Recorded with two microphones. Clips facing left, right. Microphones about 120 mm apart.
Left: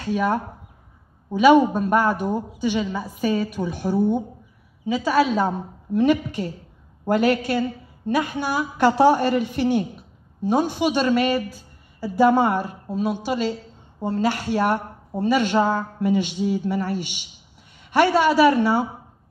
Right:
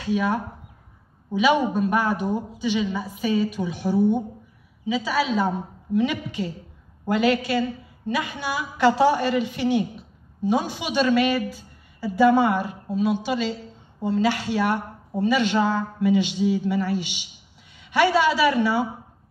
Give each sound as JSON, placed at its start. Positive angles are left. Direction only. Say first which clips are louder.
{"t": 0.0, "sound": "a woman's voice", "louder": "left 1 dB", "side_deg": 45}